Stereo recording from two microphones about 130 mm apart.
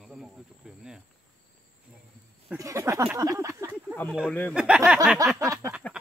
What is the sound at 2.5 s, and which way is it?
Speech, 25° right (ahead or behind).